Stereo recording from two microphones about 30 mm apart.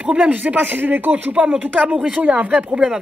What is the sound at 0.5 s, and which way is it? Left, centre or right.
Speech, right.